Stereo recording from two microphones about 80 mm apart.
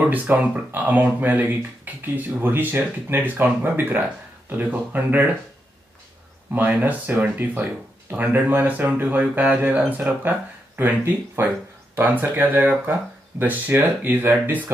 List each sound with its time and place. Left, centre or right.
0.0 s speech: right
6.5 s speech: right